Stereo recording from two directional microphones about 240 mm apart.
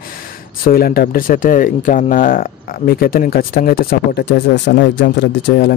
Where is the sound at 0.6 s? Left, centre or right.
Left.